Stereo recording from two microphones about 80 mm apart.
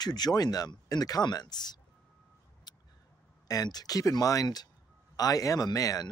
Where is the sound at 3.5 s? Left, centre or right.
Left.